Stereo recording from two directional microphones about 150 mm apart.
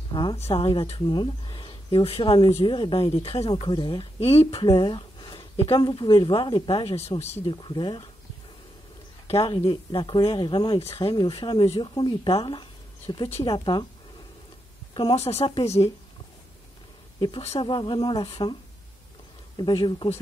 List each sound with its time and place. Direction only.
0.1 s a woman's voice: 30° left (ahead or behind)
9.3 s speech: 40° left (ahead or behind)
15.0 s speech: 40° left (ahead or behind)
17.2 s speech: 40° left (ahead or behind)